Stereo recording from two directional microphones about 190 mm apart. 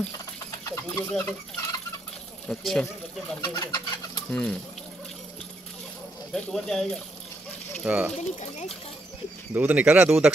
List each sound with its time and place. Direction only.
0.7 s stir: 15° left (ahead or behind)
2.4 s speech: 5° left (ahead or behind)
3.3 s speech: 20° left (ahead or behind)
4.3 s speech: 5° left (ahead or behind)
6.3 s speech: 5° left (ahead or behind)
7.8 s speech: 10° right (ahead or behind)
8.4 s speech: 35° left (ahead or behind)
9.5 s speech: 10° right (ahead or behind)